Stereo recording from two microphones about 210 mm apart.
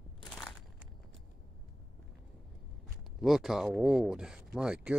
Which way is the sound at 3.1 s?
Centre (ahead or behind).